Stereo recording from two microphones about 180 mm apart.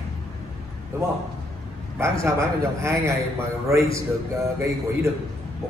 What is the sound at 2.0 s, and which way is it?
A man's voice, 15° right (ahead or behind).